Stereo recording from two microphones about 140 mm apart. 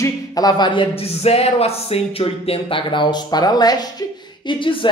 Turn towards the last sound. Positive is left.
turn(degrees=35)  # may be behind; listen again after turning